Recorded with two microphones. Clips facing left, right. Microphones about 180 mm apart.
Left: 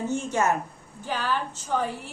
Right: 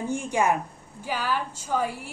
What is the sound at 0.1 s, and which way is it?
Speech, 10° right (ahead or behind).